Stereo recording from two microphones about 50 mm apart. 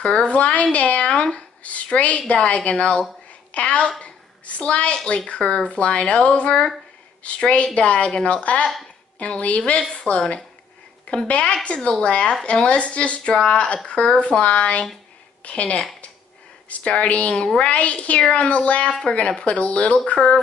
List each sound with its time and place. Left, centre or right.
0.0 s speech: left
4.0 s a sound: left
4.9 s speech: centre